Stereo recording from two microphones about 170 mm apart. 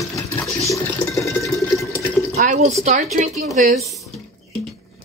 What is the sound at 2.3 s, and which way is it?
Speech, 45° right (ahead or behind).